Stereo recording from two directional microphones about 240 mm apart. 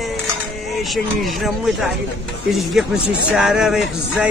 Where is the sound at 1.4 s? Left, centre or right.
Centre.